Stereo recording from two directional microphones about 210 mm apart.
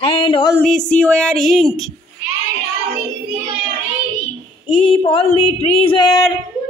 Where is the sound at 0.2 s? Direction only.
20° left (ahead or behind).